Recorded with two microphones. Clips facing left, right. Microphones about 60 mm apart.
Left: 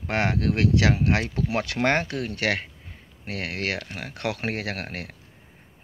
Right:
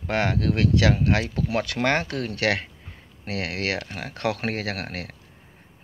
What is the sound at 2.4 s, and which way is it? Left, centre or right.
Speech, centre.